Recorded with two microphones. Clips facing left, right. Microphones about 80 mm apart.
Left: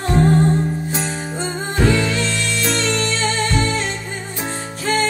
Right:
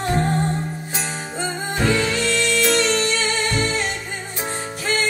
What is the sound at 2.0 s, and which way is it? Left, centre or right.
Music, left.